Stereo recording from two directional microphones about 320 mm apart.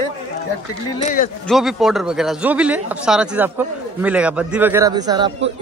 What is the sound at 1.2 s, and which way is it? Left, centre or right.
Speech, left.